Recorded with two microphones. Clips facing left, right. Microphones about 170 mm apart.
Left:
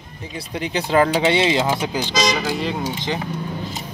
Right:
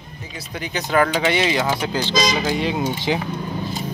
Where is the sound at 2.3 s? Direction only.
Centre (ahead or behind).